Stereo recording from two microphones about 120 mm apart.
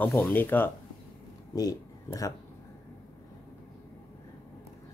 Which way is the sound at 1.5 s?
30° left (ahead or behind).